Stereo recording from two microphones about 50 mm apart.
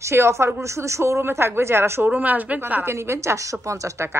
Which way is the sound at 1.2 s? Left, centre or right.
Right.